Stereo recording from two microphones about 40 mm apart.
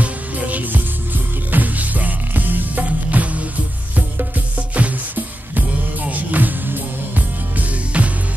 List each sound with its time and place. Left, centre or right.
0.0 s music: right
4.7 s music: right
6.0 s music: right